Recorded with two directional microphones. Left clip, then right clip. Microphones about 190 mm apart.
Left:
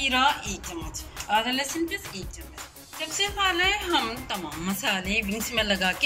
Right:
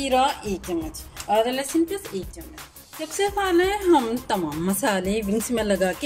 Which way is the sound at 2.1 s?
55° right (ahead or behind).